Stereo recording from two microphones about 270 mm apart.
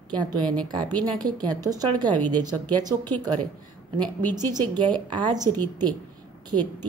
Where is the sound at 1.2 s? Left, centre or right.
Centre.